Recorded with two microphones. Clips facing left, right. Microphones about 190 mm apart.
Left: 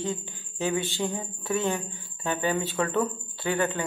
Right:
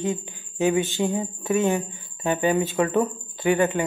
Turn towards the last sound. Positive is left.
turn(degrees=-15)  # may be behind; listen again after turning